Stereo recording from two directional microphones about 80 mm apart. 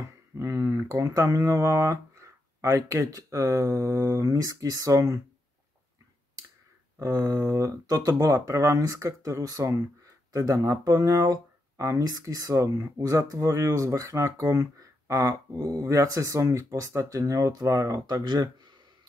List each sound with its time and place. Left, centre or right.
0.0 s speech: right
7.0 s speech: right
17.9 s speech: right